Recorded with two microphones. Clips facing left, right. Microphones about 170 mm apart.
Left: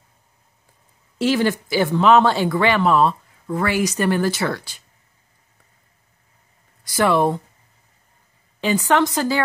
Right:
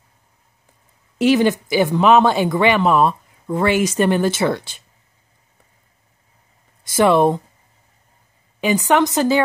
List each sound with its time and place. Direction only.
1.1 s speech: 20° right (ahead or behind)
6.8 s speech: 20° right (ahead or behind)
8.5 s speech: 15° right (ahead or behind)